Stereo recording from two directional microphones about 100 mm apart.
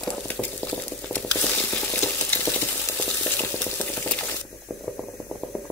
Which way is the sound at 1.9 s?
15° left (ahead or behind).